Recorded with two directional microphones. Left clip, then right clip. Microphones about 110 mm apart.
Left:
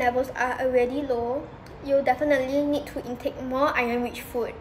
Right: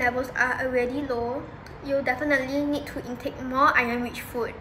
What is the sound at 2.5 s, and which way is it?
Speech, 5° right (ahead or behind).